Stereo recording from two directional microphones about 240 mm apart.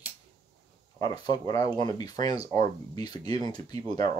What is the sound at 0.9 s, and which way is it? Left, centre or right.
Speech, centre.